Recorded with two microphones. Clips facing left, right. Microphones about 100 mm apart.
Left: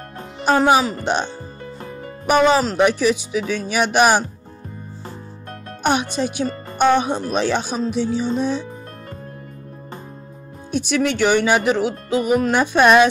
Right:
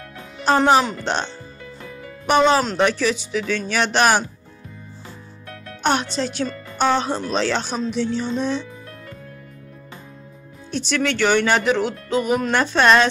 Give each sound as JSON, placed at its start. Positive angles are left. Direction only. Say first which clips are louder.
{"t": 0.5, "sound": "speech", "louder": "left 1 dB", "side_deg": 5}
{"t": 1.8, "sound": "music", "louder": "left 3 dB", "side_deg": 40}
{"t": 2.2, "sound": "speech", "louder": "left 1 dB", "side_deg": 10}
{"t": 5.8, "sound": "music", "louder": "left 1 dB", "side_deg": 10}
{"t": 6.1, "sound": "speech", "louder": "left 2 dB", "side_deg": 15}
{"t": 10.7, "sound": "speech", "louder": "left 3 dB", "side_deg": 10}